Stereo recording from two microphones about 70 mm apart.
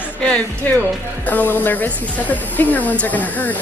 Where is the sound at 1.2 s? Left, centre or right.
Left.